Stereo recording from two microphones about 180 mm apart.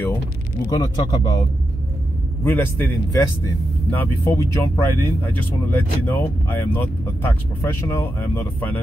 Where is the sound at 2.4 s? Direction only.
10° left (ahead or behind).